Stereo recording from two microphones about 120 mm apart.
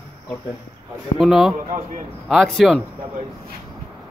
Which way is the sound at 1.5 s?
80° right.